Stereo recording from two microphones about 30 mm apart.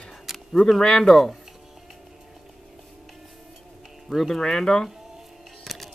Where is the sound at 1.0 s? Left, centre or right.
Centre.